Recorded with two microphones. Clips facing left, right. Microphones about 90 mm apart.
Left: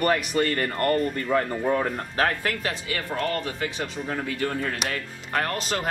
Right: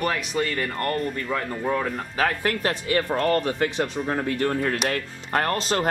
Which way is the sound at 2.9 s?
45° right (ahead or behind).